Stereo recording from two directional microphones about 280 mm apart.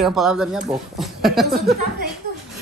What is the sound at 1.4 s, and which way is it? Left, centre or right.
Speech, right.